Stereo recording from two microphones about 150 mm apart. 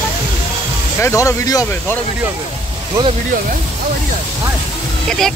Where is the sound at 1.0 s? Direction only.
20° left (ahead or behind).